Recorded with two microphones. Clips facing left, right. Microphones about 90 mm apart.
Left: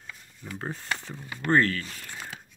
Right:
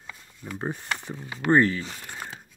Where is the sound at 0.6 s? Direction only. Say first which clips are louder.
Right 2 dB; 20° right (ahead or behind).